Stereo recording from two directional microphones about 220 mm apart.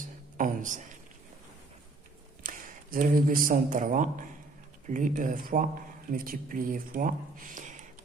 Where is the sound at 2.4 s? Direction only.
40° right (ahead or behind).